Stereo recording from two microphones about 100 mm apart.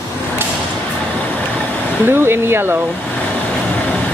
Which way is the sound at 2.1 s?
25° right (ahead or behind).